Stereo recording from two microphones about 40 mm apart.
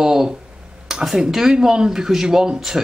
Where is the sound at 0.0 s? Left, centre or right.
Centre.